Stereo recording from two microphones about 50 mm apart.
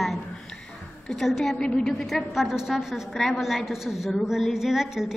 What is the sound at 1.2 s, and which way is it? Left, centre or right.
Speech, centre.